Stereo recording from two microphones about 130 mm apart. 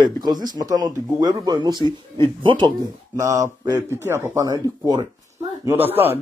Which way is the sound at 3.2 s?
20° right (ahead or behind).